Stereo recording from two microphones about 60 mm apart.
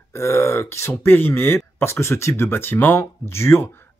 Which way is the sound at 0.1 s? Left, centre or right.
Left.